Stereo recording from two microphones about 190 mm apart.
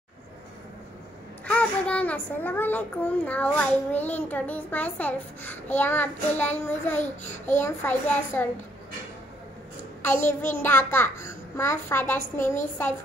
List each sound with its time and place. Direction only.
1.4 s a child's voice: 5° left (ahead or behind)
7.0 s a child's voice: 40° left (ahead or behind)
7.6 s a child's voice: 10° left (ahead or behind)
10.0 s a child's voice: 10° left (ahead or behind)